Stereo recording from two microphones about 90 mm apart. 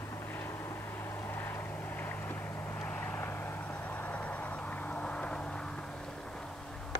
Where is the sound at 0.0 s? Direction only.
30° left (ahead or behind).